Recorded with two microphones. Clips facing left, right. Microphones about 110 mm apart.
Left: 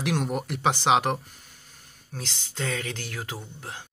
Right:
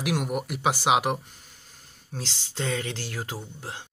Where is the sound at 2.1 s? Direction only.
30° right (ahead or behind).